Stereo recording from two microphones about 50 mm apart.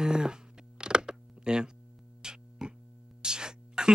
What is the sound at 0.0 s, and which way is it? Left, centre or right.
Music, centre.